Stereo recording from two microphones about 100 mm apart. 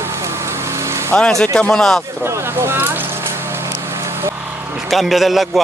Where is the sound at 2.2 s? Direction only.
25° right (ahead or behind).